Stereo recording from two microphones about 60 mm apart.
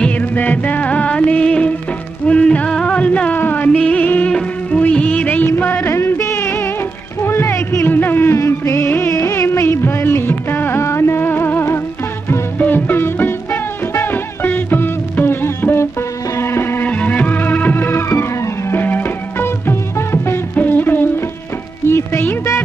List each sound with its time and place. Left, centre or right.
0.0 s music of bollywood: left
2.2 s music: centre
3.7 s music of bollywood: centre
5.6 s music: left
5.9 s music: left
8.4 s music: left
9.1 s music of bollywood: left
12.5 s music: left
16.8 s music: left
20.5 s music: left